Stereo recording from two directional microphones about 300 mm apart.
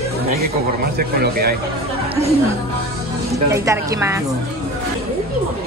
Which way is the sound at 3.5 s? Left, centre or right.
Centre.